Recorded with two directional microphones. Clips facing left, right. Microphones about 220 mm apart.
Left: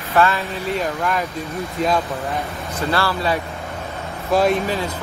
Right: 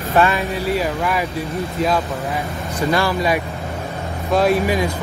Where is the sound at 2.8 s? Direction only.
15° right (ahead or behind).